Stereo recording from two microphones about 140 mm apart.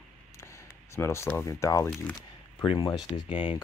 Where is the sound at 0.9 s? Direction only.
20° left (ahead or behind).